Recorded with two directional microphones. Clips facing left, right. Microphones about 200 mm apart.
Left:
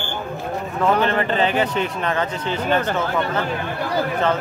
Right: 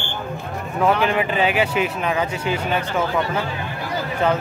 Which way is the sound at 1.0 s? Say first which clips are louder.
Even; 10° right (ahead or behind).